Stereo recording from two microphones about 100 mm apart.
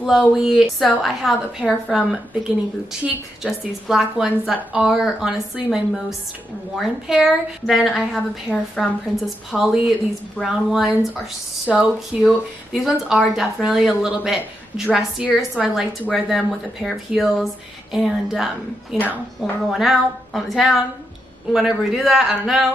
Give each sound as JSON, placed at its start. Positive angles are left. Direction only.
{"t": 0.0, "sound": "a woman's voice", "side_deg": -5}
{"t": 3.4, "sound": "a woman's voice", "side_deg": 0}